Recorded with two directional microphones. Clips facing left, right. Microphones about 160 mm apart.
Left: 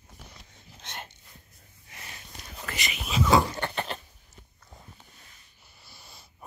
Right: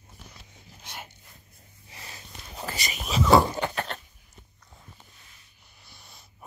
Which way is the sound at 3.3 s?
60° right (ahead or behind).